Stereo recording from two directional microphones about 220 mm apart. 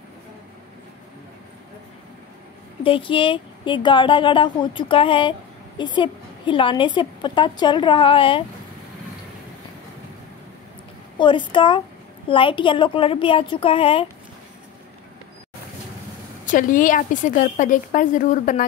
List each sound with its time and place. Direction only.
2.8 s a woman's voice: 25° left (ahead or behind)
11.1 s a woman's voice: 20° left (ahead or behind)
16.4 s a woman's voice: 35° left (ahead or behind)